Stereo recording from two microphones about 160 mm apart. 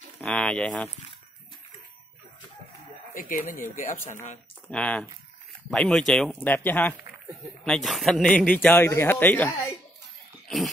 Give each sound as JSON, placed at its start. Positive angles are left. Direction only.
{"t": 0.2, "sound": "speech", "side_deg": 5}
{"t": 3.2, "sound": "speech", "side_deg": 60}
{"t": 4.6, "sound": "speech", "side_deg": 10}